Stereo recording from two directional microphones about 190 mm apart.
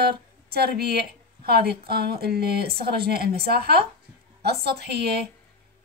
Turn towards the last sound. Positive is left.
turn(degrees=-60)  # may be behind; listen again after turning